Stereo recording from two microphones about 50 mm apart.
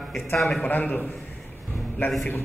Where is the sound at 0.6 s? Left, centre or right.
Left.